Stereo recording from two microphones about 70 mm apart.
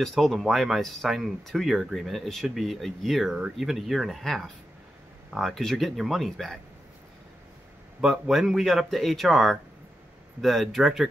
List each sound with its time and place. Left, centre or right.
0.0 s speech: centre
8.0 s speech: centre